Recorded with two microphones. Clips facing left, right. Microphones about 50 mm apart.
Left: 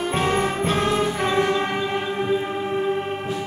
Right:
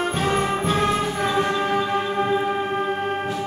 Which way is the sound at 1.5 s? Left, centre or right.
Left.